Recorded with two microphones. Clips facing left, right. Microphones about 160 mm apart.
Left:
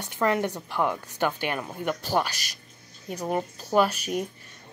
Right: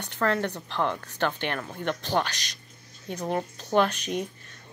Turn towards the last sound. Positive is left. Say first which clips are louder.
# left 1 dB
turn(degrees=5)  # may be behind; listen again after turning